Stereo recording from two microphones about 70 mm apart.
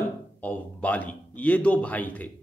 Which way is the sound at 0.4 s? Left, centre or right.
Left.